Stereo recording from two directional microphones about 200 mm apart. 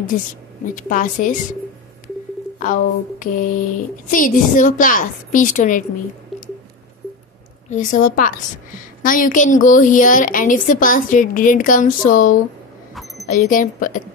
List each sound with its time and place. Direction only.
0.7 s a woman's voice: 40° left (ahead or behind)
2.6 s a woman's voice: 40° left (ahead or behind)
6.3 s squish: centre (ahead or behind)
7.7 s a woman's voice: 40° left (ahead or behind)